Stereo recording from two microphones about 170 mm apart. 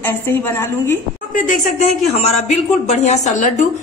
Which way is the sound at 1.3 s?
50° left (ahead or behind).